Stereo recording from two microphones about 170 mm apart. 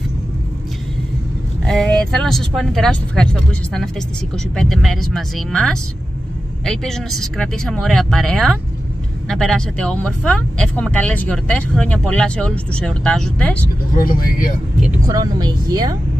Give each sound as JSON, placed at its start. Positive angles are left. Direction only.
{"t": 1.7, "sound": "speech", "side_deg": 5}
{"t": 13.9, "sound": "speech", "side_deg": 55}
{"t": 15.0, "sound": "speech", "side_deg": -25}